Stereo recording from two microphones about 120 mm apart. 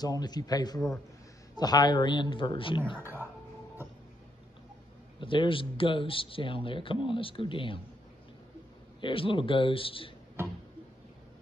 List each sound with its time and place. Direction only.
0.0 s a man's voice: 35° left (ahead or behind)
3.0 s speech: 15° right (ahead or behind)
5.2 s speech: 45° left (ahead or behind)
9.0 s speech: 45° left (ahead or behind)